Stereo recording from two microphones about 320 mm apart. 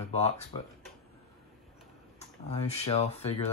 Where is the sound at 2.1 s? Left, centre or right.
Centre.